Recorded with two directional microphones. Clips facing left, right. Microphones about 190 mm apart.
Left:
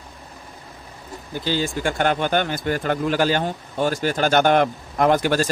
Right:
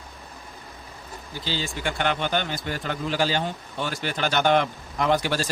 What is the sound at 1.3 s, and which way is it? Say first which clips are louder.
Speech: left 7 dB; 50° left (ahead or behind).